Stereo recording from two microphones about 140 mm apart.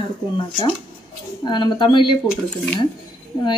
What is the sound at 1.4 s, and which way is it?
Speech, 35° left (ahead or behind).